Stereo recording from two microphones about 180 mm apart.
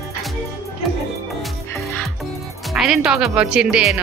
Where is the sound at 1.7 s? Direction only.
15° left (ahead or behind).